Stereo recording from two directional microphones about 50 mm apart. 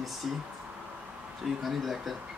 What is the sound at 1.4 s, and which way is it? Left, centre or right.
Speech, centre.